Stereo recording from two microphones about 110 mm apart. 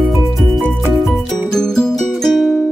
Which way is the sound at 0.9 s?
Centre (ahead or behind).